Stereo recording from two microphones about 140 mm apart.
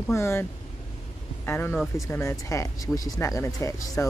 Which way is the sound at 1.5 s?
15° left (ahead or behind).